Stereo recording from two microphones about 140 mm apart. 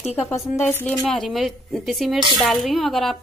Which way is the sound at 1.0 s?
Centre (ahead or behind).